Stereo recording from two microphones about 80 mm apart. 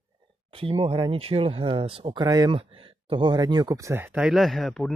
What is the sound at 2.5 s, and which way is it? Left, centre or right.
Speech, right.